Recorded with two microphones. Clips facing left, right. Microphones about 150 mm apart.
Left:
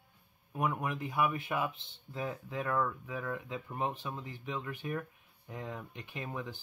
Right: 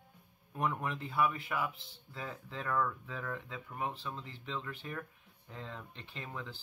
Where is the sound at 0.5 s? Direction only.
10° left (ahead or behind).